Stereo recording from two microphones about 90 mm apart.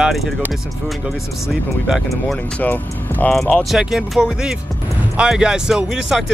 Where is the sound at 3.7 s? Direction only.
5° right (ahead or behind).